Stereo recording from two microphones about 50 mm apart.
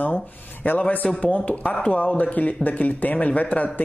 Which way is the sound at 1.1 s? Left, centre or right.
Left.